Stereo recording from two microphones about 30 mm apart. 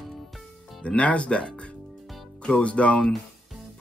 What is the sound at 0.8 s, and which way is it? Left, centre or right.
Speech, left.